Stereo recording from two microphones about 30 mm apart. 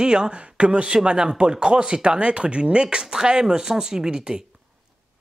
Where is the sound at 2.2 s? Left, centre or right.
Right.